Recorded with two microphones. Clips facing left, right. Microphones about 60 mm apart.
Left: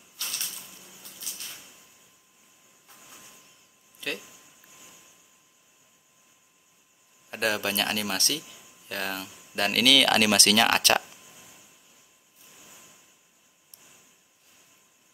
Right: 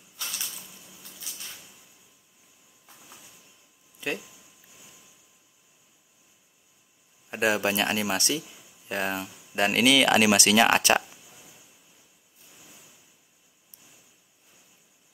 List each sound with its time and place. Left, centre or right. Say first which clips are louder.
4.0 s speech: right 3 dB; centre
7.2 s speech: right 3 dB; centre